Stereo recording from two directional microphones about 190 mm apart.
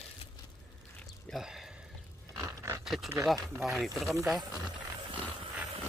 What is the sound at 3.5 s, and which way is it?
Speech, centre (ahead or behind).